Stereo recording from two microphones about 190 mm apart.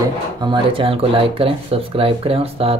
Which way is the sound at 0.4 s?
25° right (ahead or behind).